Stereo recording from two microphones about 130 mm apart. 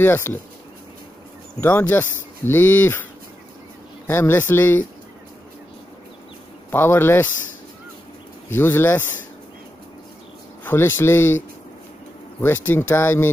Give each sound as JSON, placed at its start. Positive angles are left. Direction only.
{"t": 0.0, "sound": "speech", "side_deg": 15}
{"t": 1.6, "sound": "speech", "side_deg": 15}
{"t": 4.1, "sound": "speech", "side_deg": 15}
{"t": 6.7, "sound": "speech", "side_deg": 15}
{"t": 8.5, "sound": "speech", "side_deg": 15}
{"t": 10.6, "sound": "speech", "side_deg": 20}
{"t": 12.4, "sound": "speech", "side_deg": 15}